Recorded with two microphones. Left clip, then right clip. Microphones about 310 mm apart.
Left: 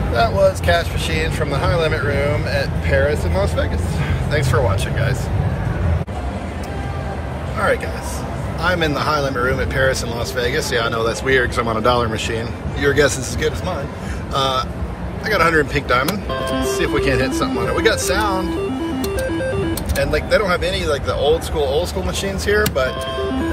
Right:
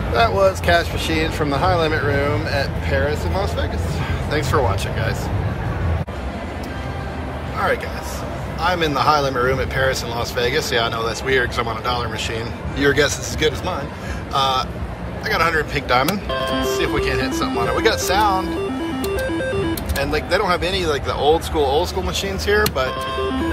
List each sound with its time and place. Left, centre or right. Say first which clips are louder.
0.1 s speech: even; right
8.6 s speech: right 1 dB; centre
20.0 s speech: left 3 dB; centre